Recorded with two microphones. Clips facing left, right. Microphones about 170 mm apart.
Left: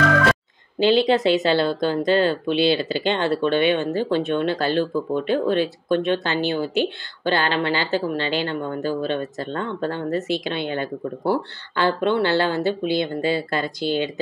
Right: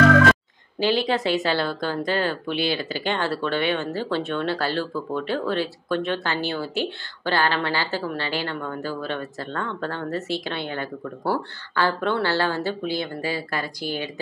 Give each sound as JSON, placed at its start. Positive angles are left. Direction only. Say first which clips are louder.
{"t": 0.7, "sound": "speech", "louder": "left 5 dB", "side_deg": 20}